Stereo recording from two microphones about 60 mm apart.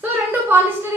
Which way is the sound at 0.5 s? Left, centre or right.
Right.